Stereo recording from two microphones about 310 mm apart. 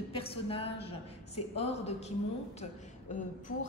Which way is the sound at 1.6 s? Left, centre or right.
Centre.